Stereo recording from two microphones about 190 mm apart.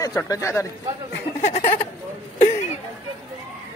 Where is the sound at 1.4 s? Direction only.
35° left (ahead or behind).